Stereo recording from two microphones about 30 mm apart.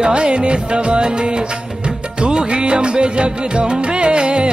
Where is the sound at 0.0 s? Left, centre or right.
Right.